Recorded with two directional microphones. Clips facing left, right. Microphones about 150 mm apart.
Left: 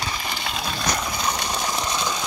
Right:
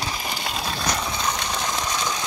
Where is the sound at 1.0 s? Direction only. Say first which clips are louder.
Even; 15° left (ahead or behind).